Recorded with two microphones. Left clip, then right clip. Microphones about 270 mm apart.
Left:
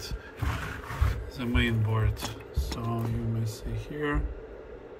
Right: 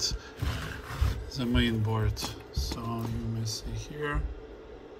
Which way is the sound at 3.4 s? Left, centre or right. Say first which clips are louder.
Right 1 dB; centre.